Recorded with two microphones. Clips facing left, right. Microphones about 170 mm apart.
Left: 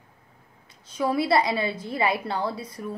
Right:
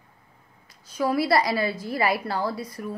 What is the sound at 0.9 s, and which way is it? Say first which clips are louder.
A woman's voice: right 1 dB; 25° left (ahead or behind).